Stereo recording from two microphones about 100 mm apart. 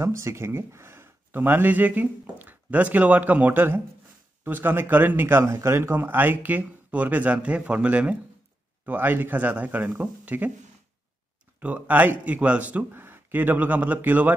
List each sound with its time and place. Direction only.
0.0 s speech: 30° right (ahead or behind)
11.6 s speech: 15° right (ahead or behind)